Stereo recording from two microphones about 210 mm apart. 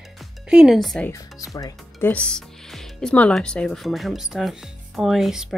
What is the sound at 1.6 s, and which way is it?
Speech, 15° left (ahead or behind).